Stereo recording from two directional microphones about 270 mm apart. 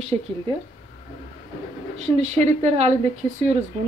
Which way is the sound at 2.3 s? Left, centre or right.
Right.